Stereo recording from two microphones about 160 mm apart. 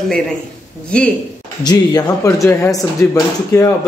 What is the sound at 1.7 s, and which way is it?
A man's voice, 25° left (ahead or behind).